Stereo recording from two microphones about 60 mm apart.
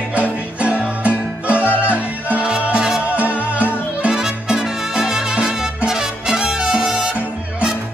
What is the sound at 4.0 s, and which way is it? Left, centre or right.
Music, centre.